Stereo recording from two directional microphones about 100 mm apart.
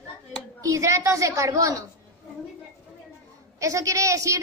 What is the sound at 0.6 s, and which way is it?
A woman's voice, 30° right (ahead or behind).